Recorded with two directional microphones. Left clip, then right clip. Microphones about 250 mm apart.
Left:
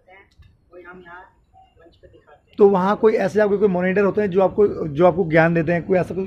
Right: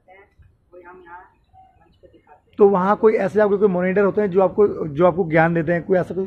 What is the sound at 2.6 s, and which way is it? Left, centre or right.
Speech, centre.